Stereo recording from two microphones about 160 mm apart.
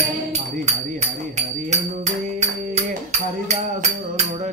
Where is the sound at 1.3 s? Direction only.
45° right (ahead or behind).